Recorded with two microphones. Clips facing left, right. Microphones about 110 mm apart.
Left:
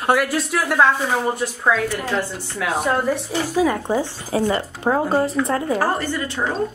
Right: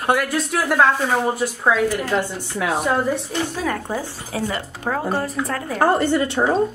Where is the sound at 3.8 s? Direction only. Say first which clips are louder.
Left 5 dB; 25° left (ahead or behind).